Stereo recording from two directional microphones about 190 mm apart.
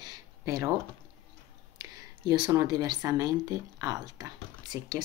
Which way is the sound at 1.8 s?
20° right (ahead or behind).